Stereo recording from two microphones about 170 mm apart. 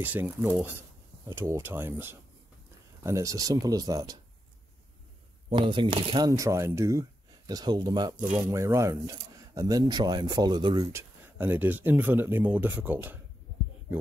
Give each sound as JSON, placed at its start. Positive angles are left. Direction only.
{"t": 0.0, "sound": "speech", "side_deg": -10}
{"t": 5.5, "sound": "speech", "side_deg": -30}
{"t": 10.9, "sound": "speech", "side_deg": -15}